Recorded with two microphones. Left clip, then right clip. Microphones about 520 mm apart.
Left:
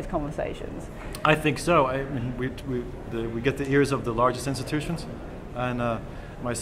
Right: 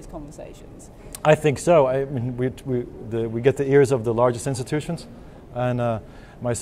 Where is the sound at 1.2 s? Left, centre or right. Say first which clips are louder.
Right 5 dB; right.